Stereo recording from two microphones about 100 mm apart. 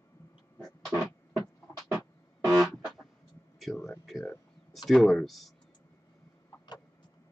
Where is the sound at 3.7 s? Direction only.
5° left (ahead or behind).